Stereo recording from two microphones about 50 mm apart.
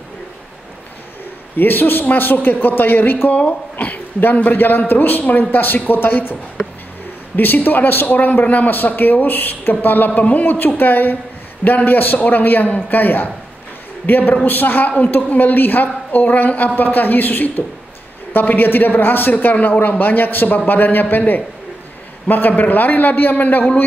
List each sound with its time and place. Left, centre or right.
1.6 s speech: left
7.3 s speech: left